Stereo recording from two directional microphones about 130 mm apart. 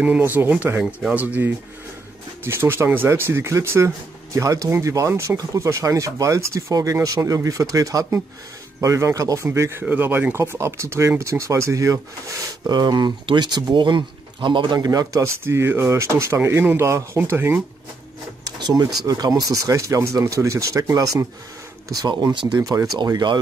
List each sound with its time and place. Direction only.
0.0 s speech: 10° right (ahead or behind)
18.4 s speech: 30° right (ahead or behind)